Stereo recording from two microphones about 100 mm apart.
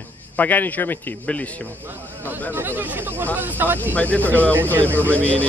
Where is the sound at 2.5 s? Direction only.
20° right (ahead or behind).